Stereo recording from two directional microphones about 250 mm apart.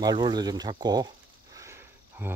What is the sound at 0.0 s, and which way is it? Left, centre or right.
Speech, centre.